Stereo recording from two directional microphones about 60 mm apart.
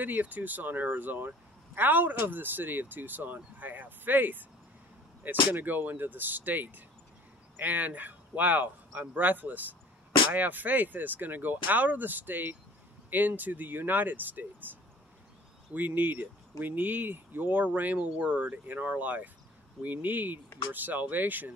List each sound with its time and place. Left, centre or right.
0.0 s speech: right